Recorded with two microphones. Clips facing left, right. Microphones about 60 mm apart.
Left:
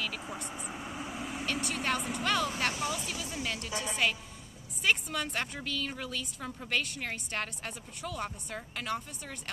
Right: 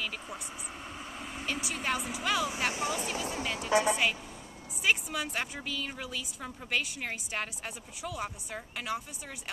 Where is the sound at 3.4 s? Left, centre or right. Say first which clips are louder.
Right 2 dB; centre.